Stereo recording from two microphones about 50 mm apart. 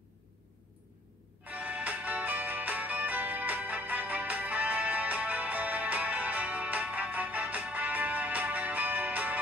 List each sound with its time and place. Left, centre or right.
1.5 s music: right